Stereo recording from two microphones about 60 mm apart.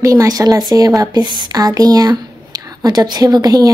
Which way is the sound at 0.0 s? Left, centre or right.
Right.